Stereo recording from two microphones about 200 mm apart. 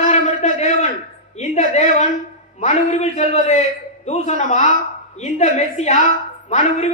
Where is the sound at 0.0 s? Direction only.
35° left (ahead or behind).